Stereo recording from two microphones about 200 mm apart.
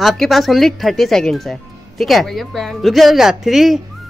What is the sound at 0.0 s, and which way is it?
Speech, centre (ahead or behind).